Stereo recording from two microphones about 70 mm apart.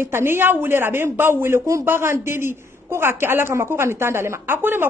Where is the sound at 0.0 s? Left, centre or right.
Right.